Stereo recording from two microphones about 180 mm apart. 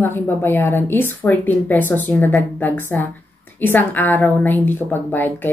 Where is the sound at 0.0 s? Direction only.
10° left (ahead or behind).